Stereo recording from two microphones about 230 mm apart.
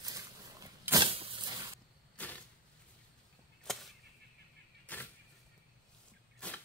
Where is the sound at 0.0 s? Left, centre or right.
Centre.